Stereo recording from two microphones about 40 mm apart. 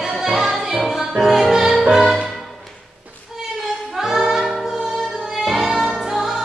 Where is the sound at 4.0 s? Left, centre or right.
Centre.